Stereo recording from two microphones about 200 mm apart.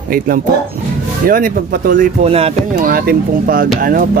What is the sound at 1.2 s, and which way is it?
Speech, 45° right (ahead or behind).